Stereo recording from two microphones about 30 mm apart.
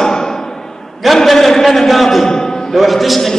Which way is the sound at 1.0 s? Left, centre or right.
Centre.